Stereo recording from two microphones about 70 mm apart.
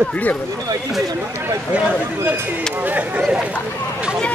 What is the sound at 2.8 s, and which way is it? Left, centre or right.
Speech, right.